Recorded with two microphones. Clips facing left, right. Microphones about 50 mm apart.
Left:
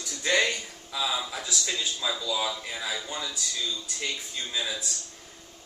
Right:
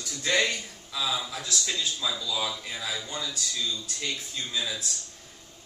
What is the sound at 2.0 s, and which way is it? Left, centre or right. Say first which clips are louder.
Speech: left 3 dB; centre.